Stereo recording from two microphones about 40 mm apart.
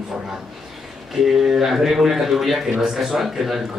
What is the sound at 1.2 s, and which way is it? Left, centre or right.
Speech, centre.